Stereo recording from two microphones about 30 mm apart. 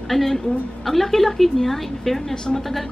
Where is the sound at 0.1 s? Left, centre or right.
Centre.